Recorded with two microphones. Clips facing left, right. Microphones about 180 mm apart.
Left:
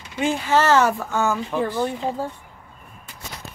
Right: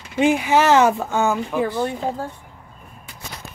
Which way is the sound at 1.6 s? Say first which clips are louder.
Right 1 dB; 10° right (ahead or behind).